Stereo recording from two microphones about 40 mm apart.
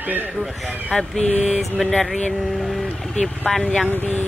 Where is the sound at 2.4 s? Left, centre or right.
Centre.